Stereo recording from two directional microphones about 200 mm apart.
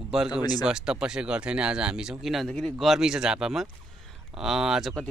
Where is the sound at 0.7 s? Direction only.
5° right (ahead or behind).